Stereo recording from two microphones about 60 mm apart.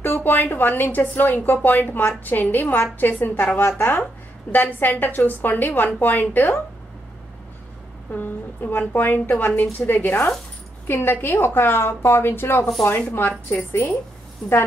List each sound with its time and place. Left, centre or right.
0.0 s a woman's voice: left
8.1 s a woman's voice: left